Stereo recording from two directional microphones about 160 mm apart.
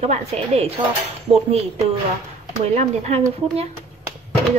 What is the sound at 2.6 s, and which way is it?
A woman's voice, 40° right (ahead or behind).